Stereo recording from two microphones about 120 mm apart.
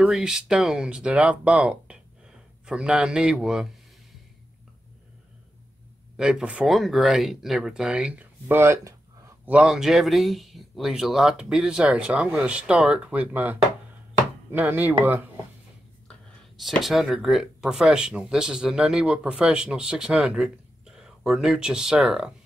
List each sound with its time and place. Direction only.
0.0 s speech: 5° right (ahead or behind)
6.1 s speech: 5° right (ahead or behind)
9.5 s speech: 5° right (ahead or behind)
16.1 s a sound: centre (ahead or behind)
16.8 s speech: 5° right (ahead or behind)